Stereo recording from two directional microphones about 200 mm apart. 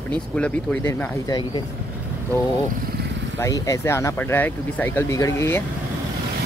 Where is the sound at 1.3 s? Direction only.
25° left (ahead or behind).